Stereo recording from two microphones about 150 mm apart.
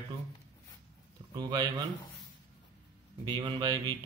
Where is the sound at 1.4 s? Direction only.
30° right (ahead or behind).